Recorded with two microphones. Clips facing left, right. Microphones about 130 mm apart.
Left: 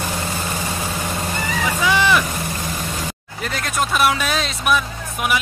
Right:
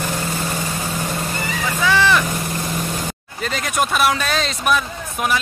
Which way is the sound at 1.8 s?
15° left (ahead or behind).